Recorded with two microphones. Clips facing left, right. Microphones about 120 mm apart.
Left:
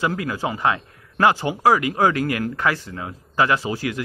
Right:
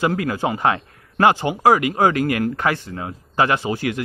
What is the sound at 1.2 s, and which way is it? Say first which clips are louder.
Speech: right 2 dB; 20° right (ahead or behind).